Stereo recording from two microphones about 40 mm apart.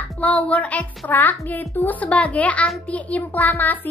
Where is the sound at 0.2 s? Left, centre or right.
Left.